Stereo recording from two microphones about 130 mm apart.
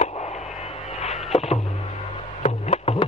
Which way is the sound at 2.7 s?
45° left (ahead or behind).